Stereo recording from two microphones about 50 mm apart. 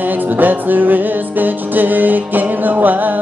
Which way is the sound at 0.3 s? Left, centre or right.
Right.